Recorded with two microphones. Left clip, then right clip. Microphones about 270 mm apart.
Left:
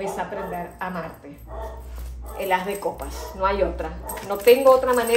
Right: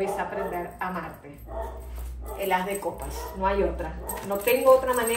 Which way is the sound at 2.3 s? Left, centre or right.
Left.